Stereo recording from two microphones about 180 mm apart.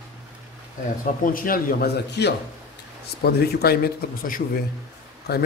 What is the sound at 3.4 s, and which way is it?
A man's voice, 60° left (ahead or behind).